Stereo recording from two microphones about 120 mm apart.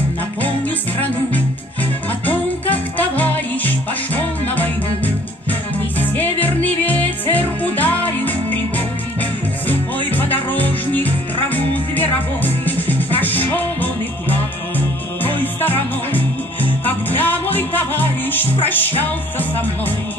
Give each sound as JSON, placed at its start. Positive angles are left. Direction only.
{"t": 3.0, "sound": "music", "side_deg": 15}
{"t": 10.1, "sound": "music", "side_deg": 15}